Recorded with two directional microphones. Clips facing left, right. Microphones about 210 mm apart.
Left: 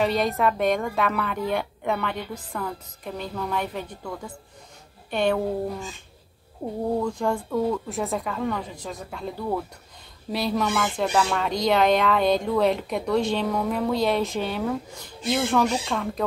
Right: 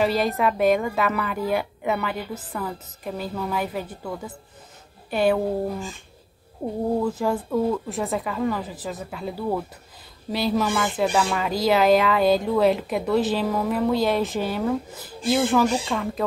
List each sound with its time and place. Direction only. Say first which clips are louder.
0.0 s a woman's voice: right 1 dB; centre (ahead or behind)
7.0 s speech: right 2 dB; 5° right (ahead or behind)